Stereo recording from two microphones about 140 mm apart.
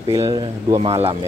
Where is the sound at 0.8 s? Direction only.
45° right (ahead or behind).